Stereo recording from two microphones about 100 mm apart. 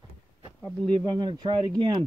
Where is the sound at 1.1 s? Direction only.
50° right (ahead or behind).